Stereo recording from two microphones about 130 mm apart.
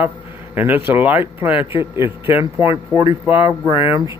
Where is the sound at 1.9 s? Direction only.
45° left (ahead or behind).